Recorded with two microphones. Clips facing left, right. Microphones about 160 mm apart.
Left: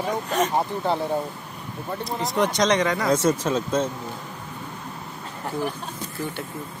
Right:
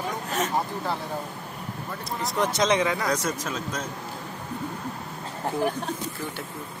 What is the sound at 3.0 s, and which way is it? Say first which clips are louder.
Speech: left 7 dB; 30° left (ahead or behind).